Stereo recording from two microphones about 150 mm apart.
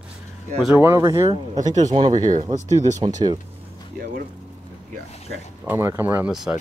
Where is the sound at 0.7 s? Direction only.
15° right (ahead or behind).